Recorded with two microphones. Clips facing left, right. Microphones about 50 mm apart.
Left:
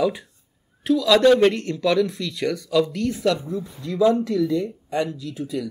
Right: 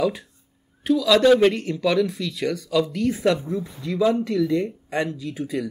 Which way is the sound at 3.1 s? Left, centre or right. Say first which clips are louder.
Right 1 dB; right.